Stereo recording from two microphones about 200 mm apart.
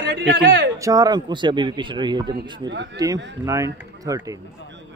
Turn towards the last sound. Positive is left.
turn(degrees=-15)  # may be behind; listen again after turning